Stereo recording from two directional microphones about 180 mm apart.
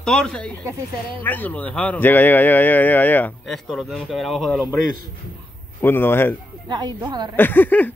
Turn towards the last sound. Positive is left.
turn(degrees=10)  # may be behind; listen again after turning